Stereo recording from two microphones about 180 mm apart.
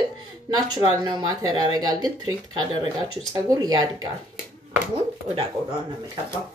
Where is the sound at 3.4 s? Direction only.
20° right (ahead or behind).